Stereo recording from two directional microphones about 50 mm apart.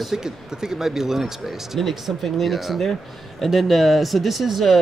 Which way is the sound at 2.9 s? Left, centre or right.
Centre.